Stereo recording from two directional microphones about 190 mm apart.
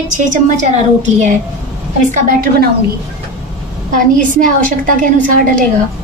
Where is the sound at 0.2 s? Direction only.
40° right (ahead or behind).